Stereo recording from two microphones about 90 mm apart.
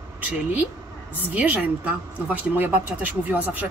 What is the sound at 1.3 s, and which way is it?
A woman's voice, 20° right (ahead or behind).